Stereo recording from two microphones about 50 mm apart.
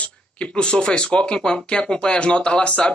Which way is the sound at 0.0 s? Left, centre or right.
Left.